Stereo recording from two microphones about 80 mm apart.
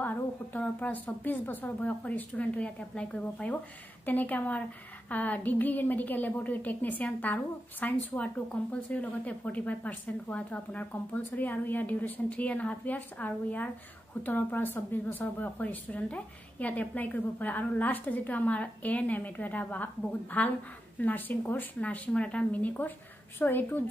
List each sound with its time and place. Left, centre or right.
0.0 s a woman's voice: left